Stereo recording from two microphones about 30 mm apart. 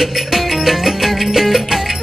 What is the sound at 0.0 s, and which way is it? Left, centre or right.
Music, centre.